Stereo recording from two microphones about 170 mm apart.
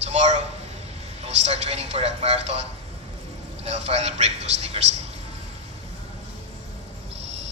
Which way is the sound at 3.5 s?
40° right (ahead or behind).